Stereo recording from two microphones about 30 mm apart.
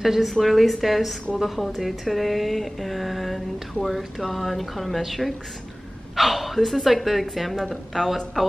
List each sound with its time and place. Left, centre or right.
0.0 s a woman's voice: centre
0.3 s speech: centre